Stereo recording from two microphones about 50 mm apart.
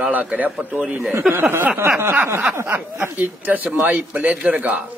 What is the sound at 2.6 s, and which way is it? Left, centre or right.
A man's voice, right.